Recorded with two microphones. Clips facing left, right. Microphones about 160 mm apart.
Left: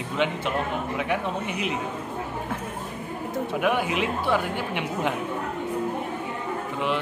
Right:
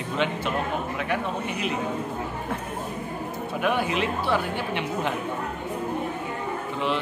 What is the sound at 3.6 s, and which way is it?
A woman's voice, 10° left (ahead or behind).